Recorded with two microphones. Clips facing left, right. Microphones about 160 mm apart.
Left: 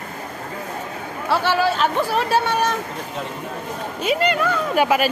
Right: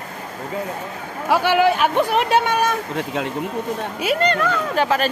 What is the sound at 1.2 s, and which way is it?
Speech, 15° right (ahead or behind).